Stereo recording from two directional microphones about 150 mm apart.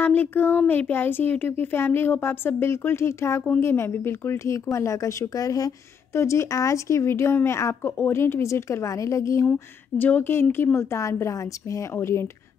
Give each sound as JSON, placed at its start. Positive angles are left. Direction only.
{"t": 0.0, "sound": "speech", "side_deg": 10}